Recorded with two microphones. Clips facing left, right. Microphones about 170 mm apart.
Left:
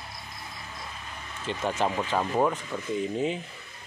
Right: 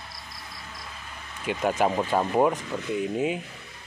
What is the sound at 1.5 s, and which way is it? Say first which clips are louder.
Speech: right 4 dB; 10° right (ahead or behind).